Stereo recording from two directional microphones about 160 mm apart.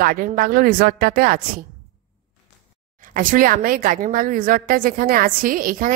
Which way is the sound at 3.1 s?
55° right (ahead or behind).